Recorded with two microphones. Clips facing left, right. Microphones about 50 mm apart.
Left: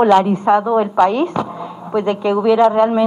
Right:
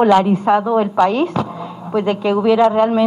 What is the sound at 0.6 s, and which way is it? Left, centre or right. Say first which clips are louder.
A man's voice: left 1 dB; centre.